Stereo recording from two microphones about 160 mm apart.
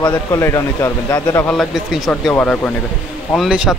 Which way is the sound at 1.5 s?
Centre (ahead or behind).